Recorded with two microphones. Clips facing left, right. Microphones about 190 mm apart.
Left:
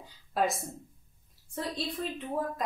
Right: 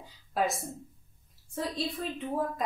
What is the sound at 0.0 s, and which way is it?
A woman's voice, centre (ahead or behind).